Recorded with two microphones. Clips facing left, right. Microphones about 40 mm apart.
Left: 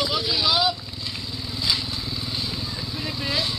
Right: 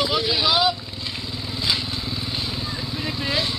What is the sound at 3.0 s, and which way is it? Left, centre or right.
Vehicle, centre.